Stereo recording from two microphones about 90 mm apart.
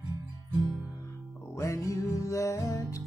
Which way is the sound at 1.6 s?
35° left (ahead or behind).